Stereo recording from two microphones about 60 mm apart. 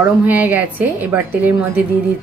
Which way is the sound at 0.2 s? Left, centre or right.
Right.